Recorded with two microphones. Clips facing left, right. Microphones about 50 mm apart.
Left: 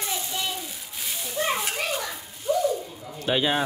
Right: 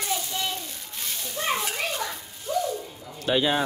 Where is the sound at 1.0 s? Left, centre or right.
Centre.